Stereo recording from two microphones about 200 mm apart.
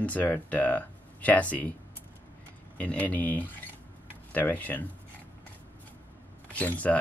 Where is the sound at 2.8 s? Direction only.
5° left (ahead or behind).